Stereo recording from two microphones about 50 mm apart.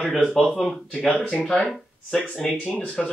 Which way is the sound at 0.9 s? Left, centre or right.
Left.